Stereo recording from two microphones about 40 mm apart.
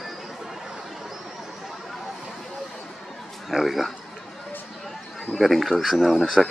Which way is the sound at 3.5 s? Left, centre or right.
Centre.